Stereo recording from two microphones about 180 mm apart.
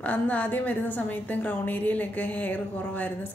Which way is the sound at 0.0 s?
10° left (ahead or behind).